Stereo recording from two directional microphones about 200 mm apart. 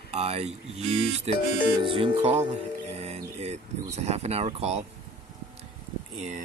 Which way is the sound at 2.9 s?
30° right (ahead or behind).